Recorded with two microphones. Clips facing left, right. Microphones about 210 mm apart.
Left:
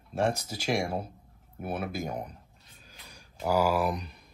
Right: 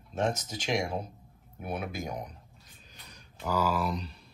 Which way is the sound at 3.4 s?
10° left (ahead or behind).